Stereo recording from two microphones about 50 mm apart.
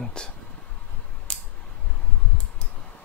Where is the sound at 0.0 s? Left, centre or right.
Centre.